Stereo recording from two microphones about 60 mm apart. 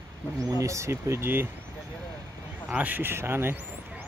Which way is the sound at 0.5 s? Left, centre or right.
Right.